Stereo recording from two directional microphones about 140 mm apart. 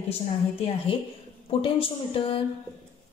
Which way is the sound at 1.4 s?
40° left (ahead or behind).